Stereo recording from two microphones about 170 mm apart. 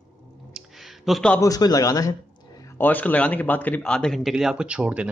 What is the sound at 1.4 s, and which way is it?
Speech, 20° left (ahead or behind).